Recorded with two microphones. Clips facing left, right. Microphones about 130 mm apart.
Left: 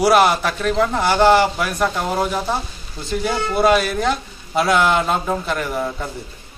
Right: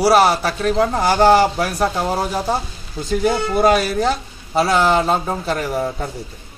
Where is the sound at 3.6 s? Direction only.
40° right (ahead or behind).